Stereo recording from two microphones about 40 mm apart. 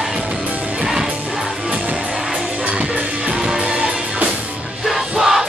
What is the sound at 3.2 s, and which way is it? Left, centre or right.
Music, right.